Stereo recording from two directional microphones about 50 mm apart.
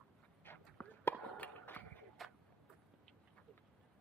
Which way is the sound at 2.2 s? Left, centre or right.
Centre.